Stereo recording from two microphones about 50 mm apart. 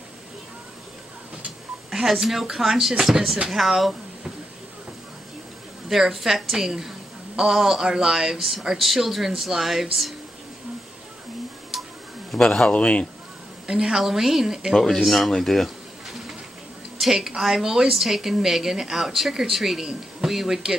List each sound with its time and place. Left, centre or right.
1.9 s speech: centre
5.9 s a woman's voice: centre
8.7 s speech: centre
11.7 s tick: centre
12.3 s a sound: centre
12.6 s a man's voice: left
13.7 s speech: centre
14.7 s speech: centre
15.3 s a sound: centre
17.0 s a woman's voice: centre